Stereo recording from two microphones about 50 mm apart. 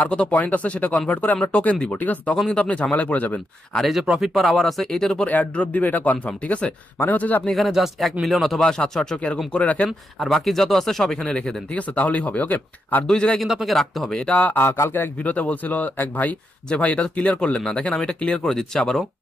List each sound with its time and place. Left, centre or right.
0.1 s speech: left
4.2 s speech: centre
5.2 s speech: left
7.5 s speech: centre
8.6 s speech: centre
9.5 s speech: left
10.1 s speech: centre
11.7 s speech: left
13.0 s speech: centre
13.4 s speech: centre
14.1 s speech: centre
14.4 s speech: left
16.6 s speech: left
18.5 s speech: centre